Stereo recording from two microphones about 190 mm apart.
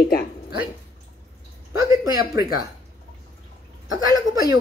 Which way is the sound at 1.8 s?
20° right (ahead or behind).